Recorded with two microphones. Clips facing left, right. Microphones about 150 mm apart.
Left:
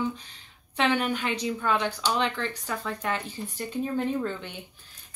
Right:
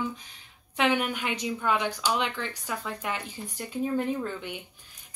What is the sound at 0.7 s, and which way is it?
A woman's voice, 10° right (ahead or behind).